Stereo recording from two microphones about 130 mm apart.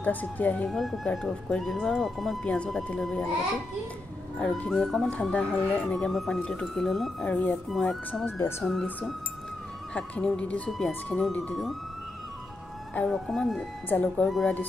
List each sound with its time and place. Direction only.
0.0 s speech: 15° left (ahead or behind)
0.7 s speech: centre (ahead or behind)
4.4 s speech: 5° left (ahead or behind)
7.7 s speech: centre (ahead or behind)
8.3 s speech: 20° left (ahead or behind)
9.9 s speech: 10° left (ahead or behind)
12.9 s speech: 5° left (ahead or behind)